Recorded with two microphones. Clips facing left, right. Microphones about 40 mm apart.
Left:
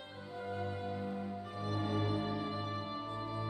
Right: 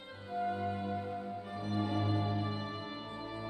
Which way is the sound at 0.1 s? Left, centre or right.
Centre.